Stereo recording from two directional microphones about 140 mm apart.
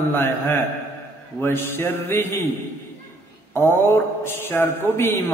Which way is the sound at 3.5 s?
15° left (ahead or behind).